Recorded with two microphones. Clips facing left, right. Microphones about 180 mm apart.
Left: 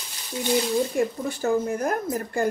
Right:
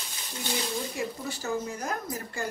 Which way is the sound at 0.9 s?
55° left (ahead or behind).